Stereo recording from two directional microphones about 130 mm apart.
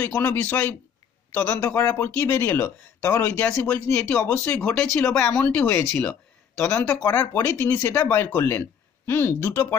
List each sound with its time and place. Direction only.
0.0 s a man's voice: 15° left (ahead or behind)
1.6 s speech: 20° left (ahead or behind)